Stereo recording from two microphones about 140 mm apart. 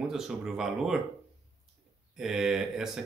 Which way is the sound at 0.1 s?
5° right (ahead or behind).